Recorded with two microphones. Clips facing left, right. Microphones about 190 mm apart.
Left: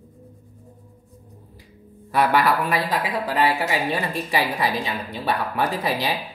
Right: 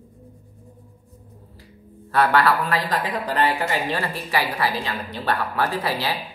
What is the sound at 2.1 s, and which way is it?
A woman's voice, 15° left (ahead or behind).